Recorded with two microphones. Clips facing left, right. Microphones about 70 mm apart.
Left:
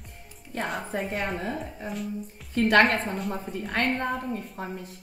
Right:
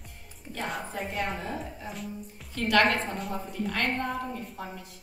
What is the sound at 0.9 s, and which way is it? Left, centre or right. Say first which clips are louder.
Speech: left 3 dB; left.